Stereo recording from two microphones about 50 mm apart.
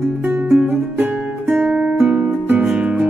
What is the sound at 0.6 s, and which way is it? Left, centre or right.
Music, right.